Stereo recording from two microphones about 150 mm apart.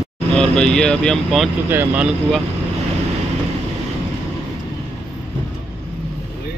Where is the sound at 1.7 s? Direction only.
15° right (ahead or behind).